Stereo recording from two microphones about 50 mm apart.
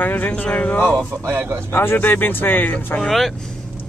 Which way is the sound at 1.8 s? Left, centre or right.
Left.